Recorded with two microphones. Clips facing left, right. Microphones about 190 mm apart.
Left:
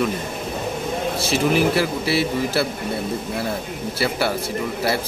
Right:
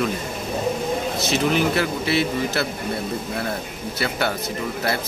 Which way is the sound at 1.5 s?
5° left (ahead or behind).